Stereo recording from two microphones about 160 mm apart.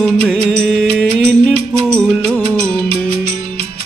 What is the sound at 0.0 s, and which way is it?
Music, centre (ahead or behind).